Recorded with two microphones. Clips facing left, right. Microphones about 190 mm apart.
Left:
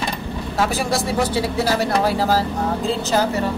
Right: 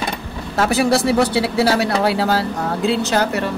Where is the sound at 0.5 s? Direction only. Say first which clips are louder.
Right 5 dB; 70° right (ahead or behind).